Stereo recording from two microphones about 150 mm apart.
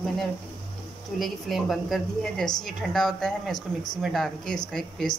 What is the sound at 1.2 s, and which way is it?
A woman's voice, centre (ahead or behind).